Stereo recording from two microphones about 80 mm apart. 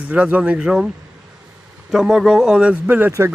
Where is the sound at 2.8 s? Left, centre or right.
Right.